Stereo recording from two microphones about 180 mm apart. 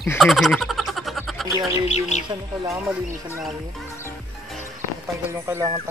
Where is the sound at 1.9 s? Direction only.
40° left (ahead or behind).